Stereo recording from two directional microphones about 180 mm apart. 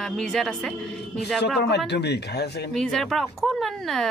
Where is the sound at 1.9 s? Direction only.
70° left (ahead or behind).